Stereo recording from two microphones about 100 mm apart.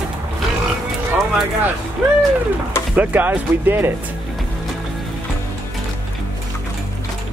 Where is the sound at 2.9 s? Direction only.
15° right (ahead or behind).